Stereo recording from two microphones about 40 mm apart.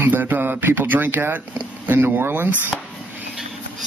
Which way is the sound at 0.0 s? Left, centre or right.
Right.